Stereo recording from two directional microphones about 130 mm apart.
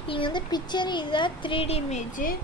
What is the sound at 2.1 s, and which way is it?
Speech, 90° left.